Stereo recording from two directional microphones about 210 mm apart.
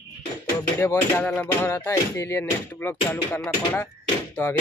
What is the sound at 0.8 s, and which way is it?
Speech, 10° left (ahead or behind).